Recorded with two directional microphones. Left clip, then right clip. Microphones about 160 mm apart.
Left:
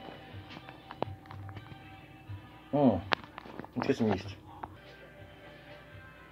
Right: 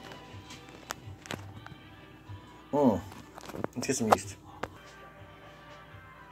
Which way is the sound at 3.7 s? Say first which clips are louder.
Left 3 dB; 25° left (ahead or behind).